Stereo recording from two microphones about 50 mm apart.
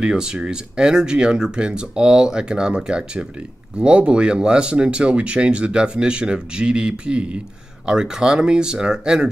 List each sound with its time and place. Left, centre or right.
0.0 s speech: centre